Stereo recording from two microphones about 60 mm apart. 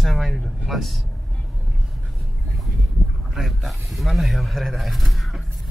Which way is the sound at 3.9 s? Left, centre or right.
Centre.